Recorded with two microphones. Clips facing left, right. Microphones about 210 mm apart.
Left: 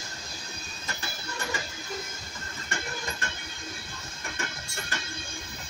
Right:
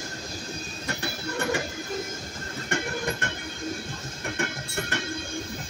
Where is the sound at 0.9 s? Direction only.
60° right (ahead or behind).